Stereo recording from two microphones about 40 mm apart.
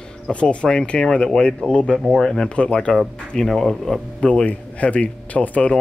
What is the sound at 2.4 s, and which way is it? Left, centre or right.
Speech, left.